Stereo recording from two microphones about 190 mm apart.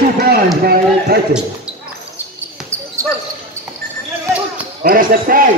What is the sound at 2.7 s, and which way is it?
Basketball bounce, 15° right (ahead or behind).